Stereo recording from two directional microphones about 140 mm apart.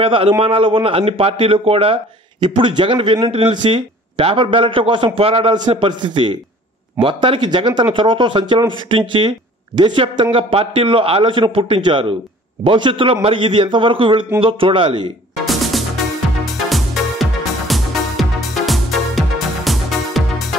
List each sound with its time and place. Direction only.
0.0 s speech: 40° right (ahead or behind)
15.4 s music: centre (ahead or behind)